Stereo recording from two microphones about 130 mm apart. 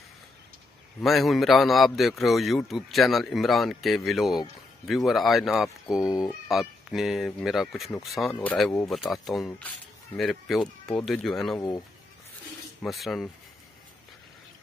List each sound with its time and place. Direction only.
1.0 s a man's voice: centre (ahead or behind)
6.0 s speech: 30° left (ahead or behind)
6.5 s a man's voice: 5° right (ahead or behind)
8.3 s speech: 10° left (ahead or behind)
8.8 s a man's voice: centre (ahead or behind)
12.8 s a man's voice: centre (ahead or behind)